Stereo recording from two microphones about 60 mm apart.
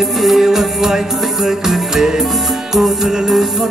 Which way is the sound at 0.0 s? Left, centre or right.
Centre.